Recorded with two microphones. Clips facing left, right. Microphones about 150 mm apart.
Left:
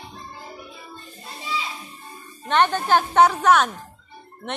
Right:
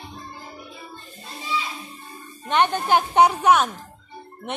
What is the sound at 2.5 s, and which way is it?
Speech, 15° right (ahead or behind).